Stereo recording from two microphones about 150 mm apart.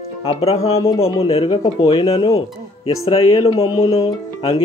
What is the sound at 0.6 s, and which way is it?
Speech, 20° left (ahead or behind).